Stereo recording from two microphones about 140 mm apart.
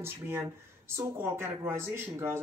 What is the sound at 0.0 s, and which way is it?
Speech, 20° right (ahead or behind).